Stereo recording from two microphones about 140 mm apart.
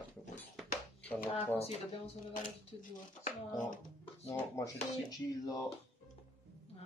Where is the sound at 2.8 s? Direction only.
70° left (ahead or behind).